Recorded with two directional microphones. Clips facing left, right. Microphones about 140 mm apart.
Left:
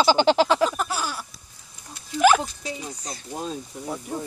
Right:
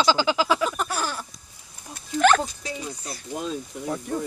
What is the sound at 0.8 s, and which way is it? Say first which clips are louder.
Speech: even; 5° left (ahead or behind).